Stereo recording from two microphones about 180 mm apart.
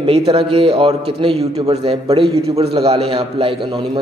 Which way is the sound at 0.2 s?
30° right (ahead or behind).